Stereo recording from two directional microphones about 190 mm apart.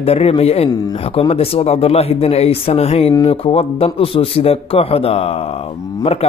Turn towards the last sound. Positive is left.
turn(degrees=30)  # may be behind; listen again after turning